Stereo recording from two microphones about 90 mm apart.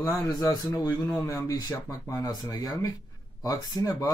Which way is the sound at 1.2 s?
40° left (ahead or behind).